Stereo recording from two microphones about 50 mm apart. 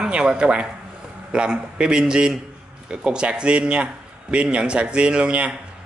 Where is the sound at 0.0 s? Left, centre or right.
Centre.